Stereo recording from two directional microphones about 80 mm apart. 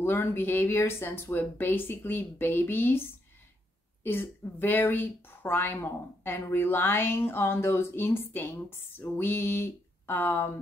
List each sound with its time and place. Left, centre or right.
0.0 s speech: left
4.0 s speech: left